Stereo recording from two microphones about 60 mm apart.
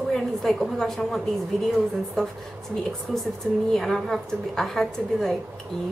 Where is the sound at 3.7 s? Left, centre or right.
Centre.